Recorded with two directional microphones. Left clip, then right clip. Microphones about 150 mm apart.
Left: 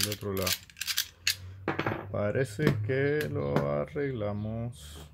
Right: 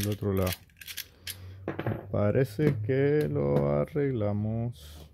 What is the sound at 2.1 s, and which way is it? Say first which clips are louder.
Speech: right 5 dB; 55° right (ahead or behind).